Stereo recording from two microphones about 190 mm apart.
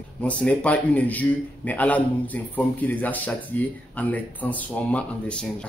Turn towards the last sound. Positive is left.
turn(degrees=5)  # may be behind; listen again after turning